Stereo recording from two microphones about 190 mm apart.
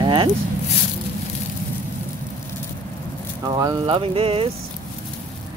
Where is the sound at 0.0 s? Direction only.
25° right (ahead or behind).